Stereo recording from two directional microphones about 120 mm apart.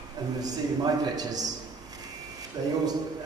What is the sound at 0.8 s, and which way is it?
Speech, 30° right (ahead or behind).